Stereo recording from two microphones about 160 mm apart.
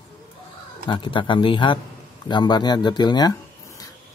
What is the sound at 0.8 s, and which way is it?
Speech, 30° left (ahead or behind).